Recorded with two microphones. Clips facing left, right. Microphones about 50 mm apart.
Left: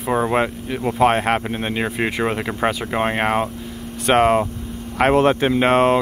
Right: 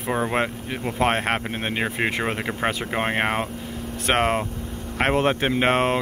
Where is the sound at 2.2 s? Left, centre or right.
Centre.